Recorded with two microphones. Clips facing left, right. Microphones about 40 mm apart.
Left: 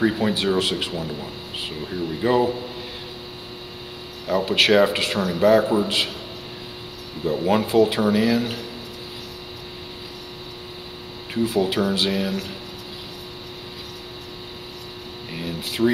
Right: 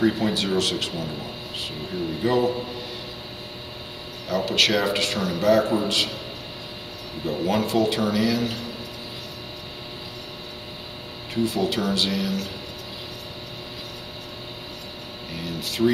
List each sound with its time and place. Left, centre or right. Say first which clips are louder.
0.0 s speech: left 1 dB; centre
2.2 s a man's voice: left 2 dB; centre
4.3 s speech: left 4 dB; centre
7.2 s speech: left 3 dB; centre
11.4 s speech: left 3 dB; centre
15.8 s speech: left 1 dB; centre